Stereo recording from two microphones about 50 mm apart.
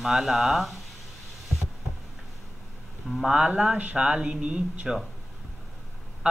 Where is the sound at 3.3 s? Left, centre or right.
Centre.